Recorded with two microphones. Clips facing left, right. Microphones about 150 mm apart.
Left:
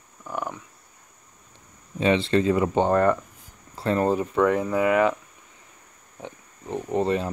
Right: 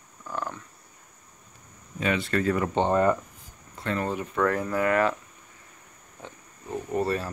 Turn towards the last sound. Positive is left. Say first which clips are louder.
# left 3 dB
turn(degrees=20)  # may be behind; listen again after turning